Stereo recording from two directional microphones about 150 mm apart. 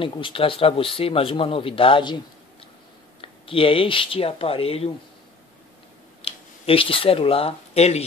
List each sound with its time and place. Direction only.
0.0 s speech: 35° left (ahead or behind)
3.2 s speech: 35° left (ahead or behind)
6.2 s speech: 40° left (ahead or behind)